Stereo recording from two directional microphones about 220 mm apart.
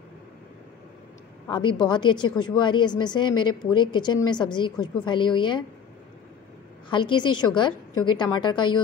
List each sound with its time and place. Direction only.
1.5 s a woman's voice: 20° left (ahead or behind)
6.9 s a woman's voice: 20° left (ahead or behind)